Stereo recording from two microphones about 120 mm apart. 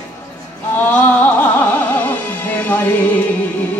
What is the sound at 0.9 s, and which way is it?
Music, 15° left (ahead or behind).